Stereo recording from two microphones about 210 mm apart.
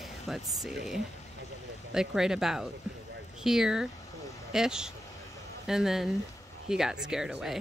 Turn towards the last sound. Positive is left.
turn(degrees=-5)  # may be behind; listen again after turning